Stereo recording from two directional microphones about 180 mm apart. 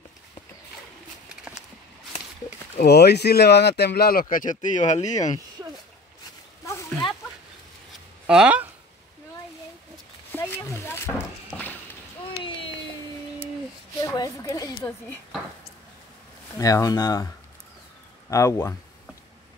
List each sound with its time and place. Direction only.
2.8 s speech: 65° left (ahead or behind); by 5.3 s 40° left (ahead or behind)
5.6 s a sound: 15° right (ahead or behind)
8.3 s speech: 5° right (ahead or behind)
10.3 s horse: 15° left (ahead or behind)
13.9 s a sound: 20° left (ahead or behind)
16.5 s speech: 20° left (ahead or behind)
18.3 s speech: 15° left (ahead or behind)